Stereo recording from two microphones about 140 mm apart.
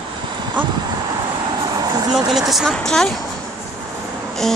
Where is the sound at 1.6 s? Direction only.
30° right (ahead or behind).